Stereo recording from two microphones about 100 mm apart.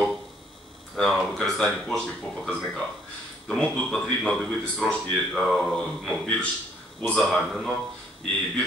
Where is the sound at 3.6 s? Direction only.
10° left (ahead or behind).